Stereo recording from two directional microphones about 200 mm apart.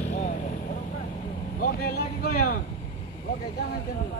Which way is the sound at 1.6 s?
45° left (ahead or behind).